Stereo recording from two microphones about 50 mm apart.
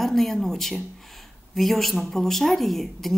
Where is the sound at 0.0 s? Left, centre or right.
Centre.